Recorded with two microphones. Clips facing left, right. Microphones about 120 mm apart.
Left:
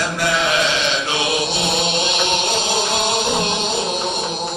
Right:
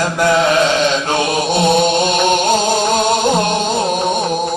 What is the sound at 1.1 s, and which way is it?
Chant, 45° right (ahead or behind).